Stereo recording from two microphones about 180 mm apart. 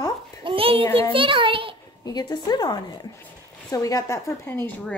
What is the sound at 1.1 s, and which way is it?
Speech, 30° right (ahead or behind).